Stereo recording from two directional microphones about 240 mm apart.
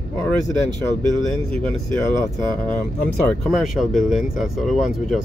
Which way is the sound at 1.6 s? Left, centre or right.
Centre.